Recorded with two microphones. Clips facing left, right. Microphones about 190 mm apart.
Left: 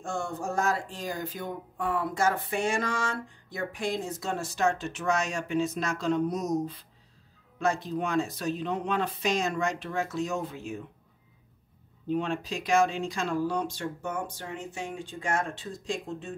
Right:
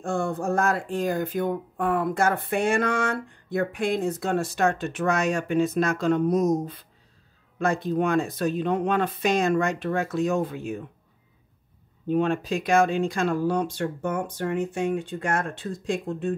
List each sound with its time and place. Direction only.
0.0 s speech: 55° right (ahead or behind)
12.1 s speech: 55° right (ahead or behind)